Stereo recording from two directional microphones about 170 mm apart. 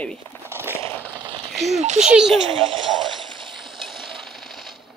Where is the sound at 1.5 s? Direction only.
Centre (ahead or behind).